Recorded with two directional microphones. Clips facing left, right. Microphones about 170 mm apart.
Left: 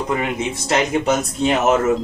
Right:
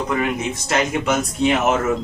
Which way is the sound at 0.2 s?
30° left (ahead or behind).